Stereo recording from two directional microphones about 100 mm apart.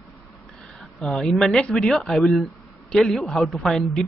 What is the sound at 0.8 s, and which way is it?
Speech, 5° left (ahead or behind).